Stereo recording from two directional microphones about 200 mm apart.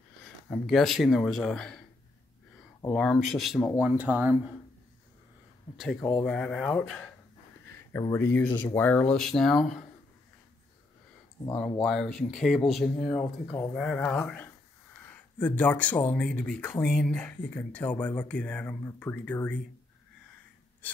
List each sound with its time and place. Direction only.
0.5 s speech: centre (ahead or behind)
2.8 s speech: 5° left (ahead or behind)
5.8 s speech: centre (ahead or behind)
7.9 s speech: 15° left (ahead or behind)
11.8 s speech: centre (ahead or behind)
13.2 s speech: 15° left (ahead or behind)
13.7 s speech: 5° left (ahead or behind)